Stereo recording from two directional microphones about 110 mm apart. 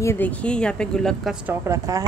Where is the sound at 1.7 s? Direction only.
25° right (ahead or behind).